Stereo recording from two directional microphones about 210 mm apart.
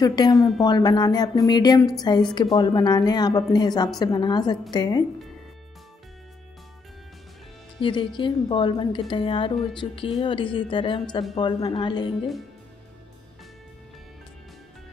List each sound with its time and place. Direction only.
0.0 s a woman's voice: 20° left (ahead or behind)
7.8 s speech: 25° left (ahead or behind)